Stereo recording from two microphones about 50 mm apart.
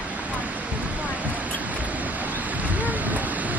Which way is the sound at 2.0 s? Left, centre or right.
Right.